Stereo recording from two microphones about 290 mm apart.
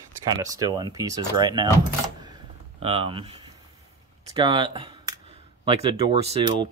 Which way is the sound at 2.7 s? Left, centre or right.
Centre.